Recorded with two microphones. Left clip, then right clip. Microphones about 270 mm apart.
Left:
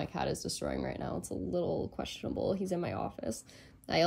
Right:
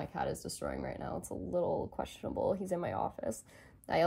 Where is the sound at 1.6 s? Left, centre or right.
Right.